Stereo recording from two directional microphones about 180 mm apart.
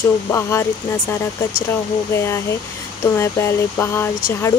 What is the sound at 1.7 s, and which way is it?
Speech, 15° left (ahead or behind).